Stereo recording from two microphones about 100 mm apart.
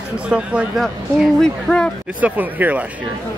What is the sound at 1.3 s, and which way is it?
Speech, 5° left (ahead or behind).